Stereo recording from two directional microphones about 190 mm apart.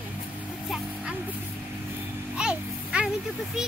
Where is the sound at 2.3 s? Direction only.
5° right (ahead or behind).